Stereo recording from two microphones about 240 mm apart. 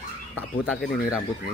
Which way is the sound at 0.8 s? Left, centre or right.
Left.